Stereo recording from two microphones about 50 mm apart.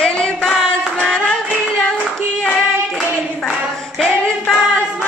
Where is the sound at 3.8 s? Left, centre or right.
Centre.